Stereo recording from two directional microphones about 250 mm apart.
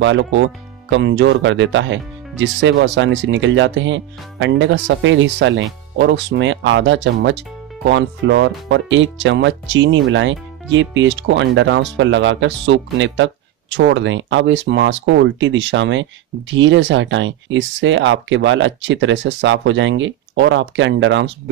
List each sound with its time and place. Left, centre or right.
0.8 s speech: right